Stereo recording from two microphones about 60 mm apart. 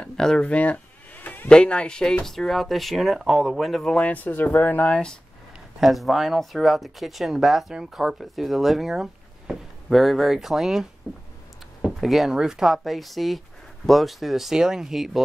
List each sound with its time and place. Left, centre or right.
0.0 s a sound: centre
0.4 s a sound: left
1.5 s speech: centre
3.8 s speech: centre
4.1 s speech: left
4.8 s speech: centre
5.8 s speech: centre